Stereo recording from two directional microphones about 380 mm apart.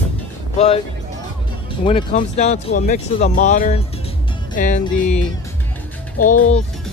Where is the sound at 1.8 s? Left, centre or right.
Centre.